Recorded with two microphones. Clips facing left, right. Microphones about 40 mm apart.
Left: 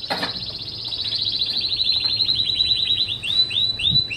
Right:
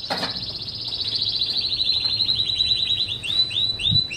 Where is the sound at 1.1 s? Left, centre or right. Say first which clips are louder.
Left 1 dB; centre.